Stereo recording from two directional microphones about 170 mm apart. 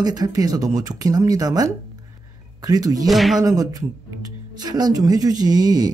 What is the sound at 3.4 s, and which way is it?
Speech, 20° right (ahead or behind).